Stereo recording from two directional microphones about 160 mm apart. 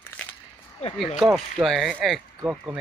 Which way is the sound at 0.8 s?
40° left (ahead or behind).